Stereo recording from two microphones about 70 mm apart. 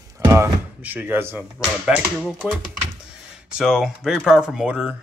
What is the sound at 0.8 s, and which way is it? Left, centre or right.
Speech, right.